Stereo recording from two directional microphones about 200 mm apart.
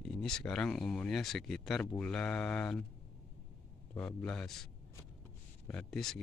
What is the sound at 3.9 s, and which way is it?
Speech, 10° left (ahead or behind).